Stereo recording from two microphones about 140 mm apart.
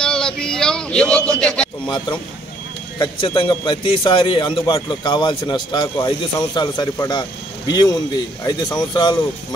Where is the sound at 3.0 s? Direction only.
35° left (ahead or behind).